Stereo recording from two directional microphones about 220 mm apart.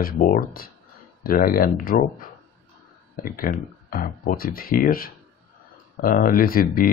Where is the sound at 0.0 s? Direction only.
35° left (ahead or behind).